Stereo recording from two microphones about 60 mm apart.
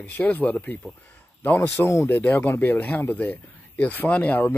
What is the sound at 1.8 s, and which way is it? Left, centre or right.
Speech, left.